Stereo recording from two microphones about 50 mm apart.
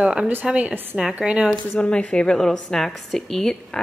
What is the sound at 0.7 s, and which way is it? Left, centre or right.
Speech, right.